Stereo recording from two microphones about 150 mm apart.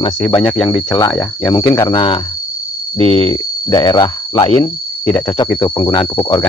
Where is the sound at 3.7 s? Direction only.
25° left (ahead or behind).